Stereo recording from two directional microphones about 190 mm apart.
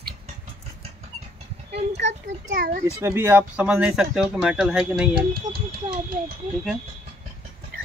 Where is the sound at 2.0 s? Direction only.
35° right (ahead or behind).